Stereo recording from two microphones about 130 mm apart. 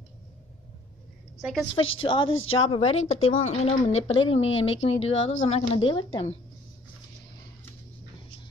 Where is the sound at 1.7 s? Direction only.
40° left (ahead or behind).